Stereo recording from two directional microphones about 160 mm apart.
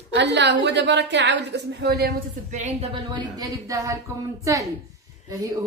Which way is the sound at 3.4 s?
20° right (ahead or behind).